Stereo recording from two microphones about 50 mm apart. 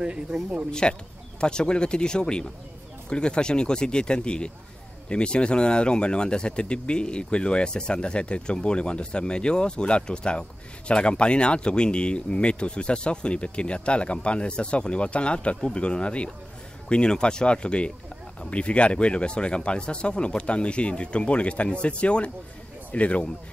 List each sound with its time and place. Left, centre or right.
0.0 s speech: centre
0.7 s speech: centre